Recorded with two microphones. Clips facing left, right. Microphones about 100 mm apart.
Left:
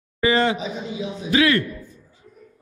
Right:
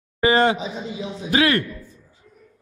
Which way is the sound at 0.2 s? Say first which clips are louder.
Right 2 dB; 55° right (ahead or behind).